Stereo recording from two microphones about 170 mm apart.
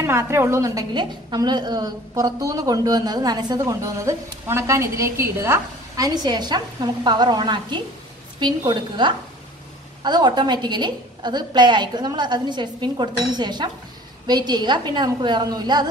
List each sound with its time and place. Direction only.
0.0 s a woman's voice: 15° right (ahead or behind)